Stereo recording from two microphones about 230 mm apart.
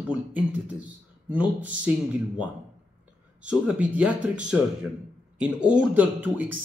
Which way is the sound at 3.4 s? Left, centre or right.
Centre.